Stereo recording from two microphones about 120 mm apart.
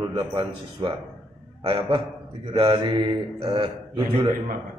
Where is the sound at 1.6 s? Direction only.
50° right (ahead or behind).